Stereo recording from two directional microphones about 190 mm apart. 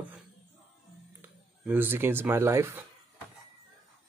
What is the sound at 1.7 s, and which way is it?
Speech, 10° right (ahead or behind).